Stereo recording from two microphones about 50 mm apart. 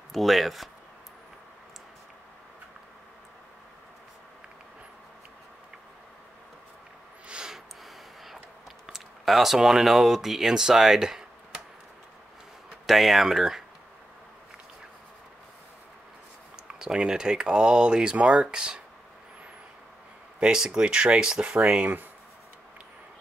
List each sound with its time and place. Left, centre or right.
0.1 s speech: centre
7.2 s a sound: centre
8.8 s speech: centre
12.8 s speech: centre
16.5 s speech: centre
20.3 s speech: centre